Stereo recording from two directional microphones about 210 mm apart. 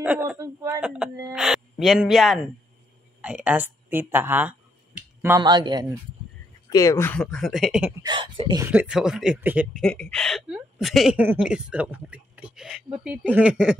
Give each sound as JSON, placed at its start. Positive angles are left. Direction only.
{"t": 0.0, "sound": "speech", "side_deg": -5}
{"t": 6.7, "sound": "speech", "side_deg": 15}
{"t": 8.0, "sound": "speech", "side_deg": -20}
{"t": 8.6, "sound": "speech", "side_deg": -5}